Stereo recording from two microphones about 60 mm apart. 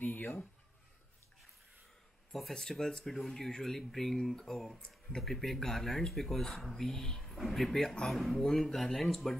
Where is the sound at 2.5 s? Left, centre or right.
Centre.